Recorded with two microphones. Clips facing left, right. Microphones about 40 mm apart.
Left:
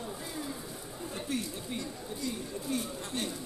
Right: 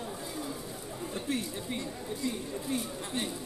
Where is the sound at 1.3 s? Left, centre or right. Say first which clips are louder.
Right 2 dB; right.